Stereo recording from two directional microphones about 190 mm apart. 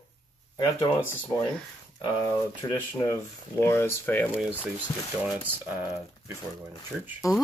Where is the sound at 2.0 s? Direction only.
25° left (ahead or behind).